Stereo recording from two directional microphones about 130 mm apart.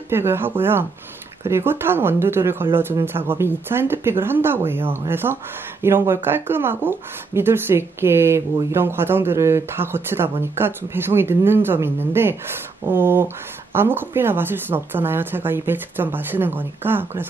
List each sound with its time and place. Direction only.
0.1 s speech: 20° right (ahead or behind)